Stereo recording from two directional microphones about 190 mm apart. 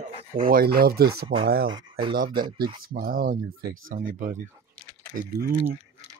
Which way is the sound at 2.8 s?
50° right (ahead or behind).